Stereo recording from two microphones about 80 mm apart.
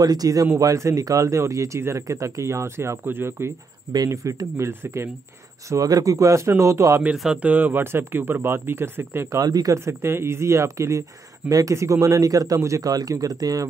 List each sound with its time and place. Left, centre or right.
0.0 s speech: right
5.7 s speech: right
7.0 s speech: centre
9.4 s speech: right
10.0 s speech: right